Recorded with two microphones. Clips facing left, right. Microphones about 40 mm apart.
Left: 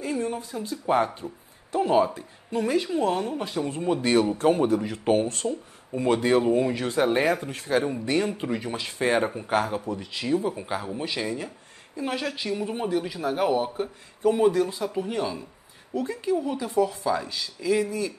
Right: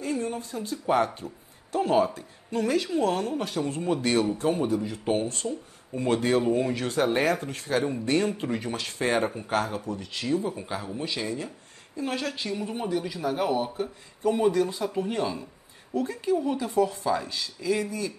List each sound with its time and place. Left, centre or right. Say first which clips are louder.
0.0 s speech: left 1 dB; centre
1.0 s speech: left 1 dB; centre
4.4 s speech: left 4 dB; left
5.4 s speech: left 3 dB; centre
7.0 s speech: left 2 dB; centre
7.4 s speech: left 1 dB; left
7.7 s a woman's voice: left 1 dB; centre